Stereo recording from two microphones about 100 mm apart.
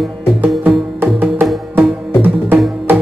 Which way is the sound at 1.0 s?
20° right (ahead or behind).